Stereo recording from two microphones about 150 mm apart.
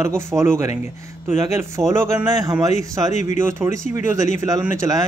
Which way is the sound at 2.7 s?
50° left (ahead or behind).